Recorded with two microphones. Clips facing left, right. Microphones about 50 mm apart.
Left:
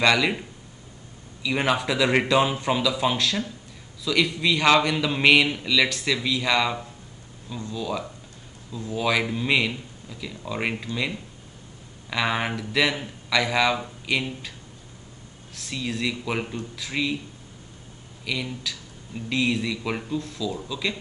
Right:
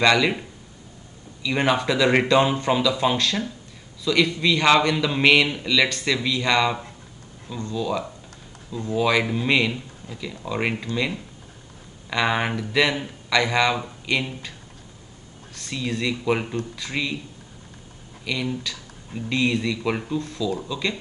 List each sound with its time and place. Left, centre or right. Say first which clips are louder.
0.0 s speech: right 2 dB; centre
1.4 s speech: right 2 dB; centre
9.5 s speech: right 1 dB; centre
15.5 s speech: right 2 dB; centre
18.2 s speech: right 3 dB; centre